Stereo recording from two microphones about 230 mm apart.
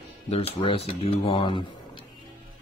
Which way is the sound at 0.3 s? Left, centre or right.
Left.